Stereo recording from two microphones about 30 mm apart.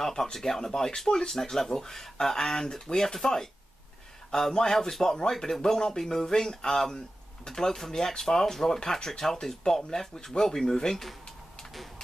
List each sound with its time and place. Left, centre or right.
0.0 s speech: centre